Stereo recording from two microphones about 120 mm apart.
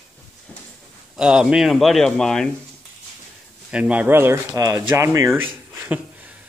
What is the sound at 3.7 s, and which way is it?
Speech, 10° right (ahead or behind).